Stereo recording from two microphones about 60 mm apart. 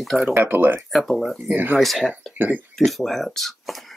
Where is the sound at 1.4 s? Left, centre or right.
Right.